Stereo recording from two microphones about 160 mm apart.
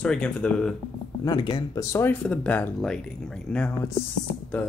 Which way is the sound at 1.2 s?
30° left (ahead or behind).